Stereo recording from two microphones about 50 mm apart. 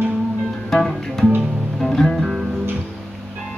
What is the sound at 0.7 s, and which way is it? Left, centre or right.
Music, centre.